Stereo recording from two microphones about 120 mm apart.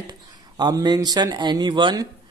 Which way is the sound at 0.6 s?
35° right (ahead or behind).